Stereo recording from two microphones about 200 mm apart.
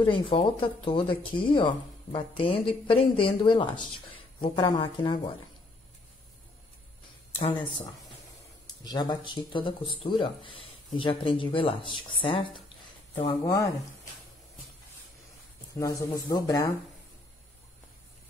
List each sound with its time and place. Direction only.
0.0 s speech: 25° left (ahead or behind)
7.3 s speech: 30° left (ahead or behind)
15.7 s speech: 20° left (ahead or behind)